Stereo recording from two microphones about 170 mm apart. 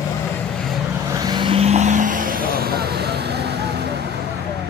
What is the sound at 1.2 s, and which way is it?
Vehicle, 25° right (ahead or behind).